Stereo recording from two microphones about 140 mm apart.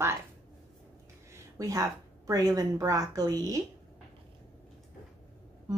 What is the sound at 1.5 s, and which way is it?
Speech, 25° right (ahead or behind).